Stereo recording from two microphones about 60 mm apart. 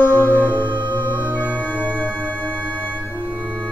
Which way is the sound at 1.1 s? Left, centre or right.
Left.